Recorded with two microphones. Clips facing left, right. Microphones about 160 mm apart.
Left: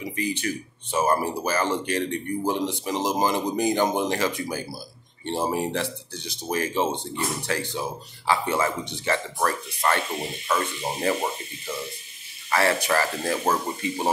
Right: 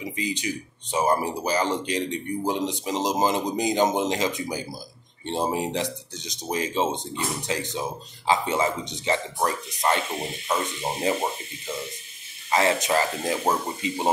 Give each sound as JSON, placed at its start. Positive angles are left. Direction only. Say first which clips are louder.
{"t": 0.0, "sound": "speech", "louder": "left 1 dB", "side_deg": -15}
{"t": 12.4, "sound": "speech", "louder": "even", "side_deg": -20}